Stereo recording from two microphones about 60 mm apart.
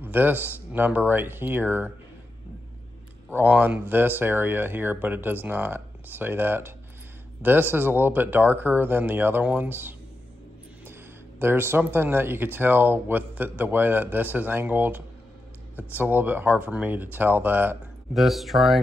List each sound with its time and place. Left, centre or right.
0.0 s speech: right
3.4 s speech: right
9.4 s speech: right
18.1 s speech: centre